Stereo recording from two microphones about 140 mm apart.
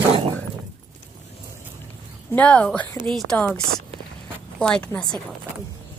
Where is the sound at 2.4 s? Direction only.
10° left (ahead or behind).